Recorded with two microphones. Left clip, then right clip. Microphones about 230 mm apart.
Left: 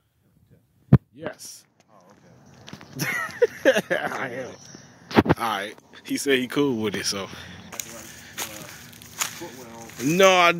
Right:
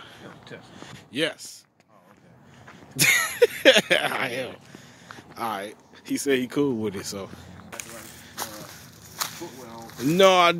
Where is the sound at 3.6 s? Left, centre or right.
Centre.